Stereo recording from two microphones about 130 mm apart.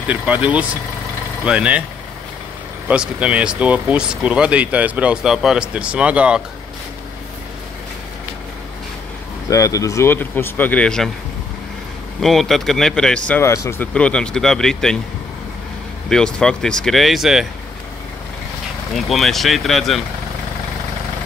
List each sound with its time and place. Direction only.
0.1 s speech: 10° right (ahead or behind)
2.9 s speech: 10° right (ahead or behind)
9.5 s speech: 25° left (ahead or behind); by 11.1 s 5° left (ahead or behind)
12.2 s speech: centre (ahead or behind)
13.3 s speech: 20° left (ahead or behind)
13.9 s speech: 10° left (ahead or behind)
16.1 s speech: 5° left (ahead or behind)
18.9 s speech: centre (ahead or behind)